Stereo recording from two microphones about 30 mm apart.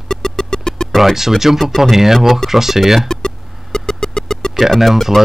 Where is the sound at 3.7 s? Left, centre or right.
Left.